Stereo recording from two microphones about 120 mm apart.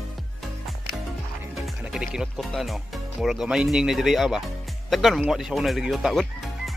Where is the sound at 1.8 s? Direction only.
5° right (ahead or behind).